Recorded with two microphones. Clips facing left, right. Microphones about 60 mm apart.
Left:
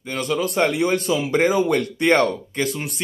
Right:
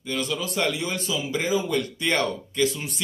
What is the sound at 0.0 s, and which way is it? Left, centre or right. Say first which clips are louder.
A man's voice: left 5 dB; left.